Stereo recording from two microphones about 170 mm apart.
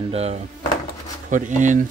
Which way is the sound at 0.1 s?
40° right (ahead or behind).